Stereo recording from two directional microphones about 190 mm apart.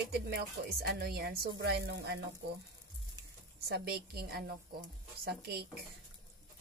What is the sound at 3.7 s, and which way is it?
Speech, 55° right (ahead or behind).